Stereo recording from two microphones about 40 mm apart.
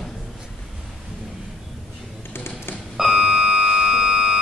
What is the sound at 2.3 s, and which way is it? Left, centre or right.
Typing, left.